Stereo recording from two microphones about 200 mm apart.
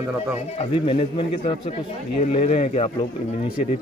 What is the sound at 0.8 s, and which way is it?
A man's voice, 25° left (ahead or behind).